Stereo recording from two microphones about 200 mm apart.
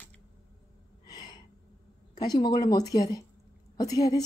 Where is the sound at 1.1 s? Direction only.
20° left (ahead or behind).